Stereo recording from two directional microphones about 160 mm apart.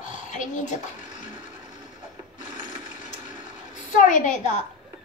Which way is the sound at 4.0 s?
50° left (ahead or behind).